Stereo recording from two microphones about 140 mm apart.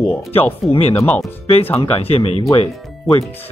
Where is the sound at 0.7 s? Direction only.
45° left (ahead or behind).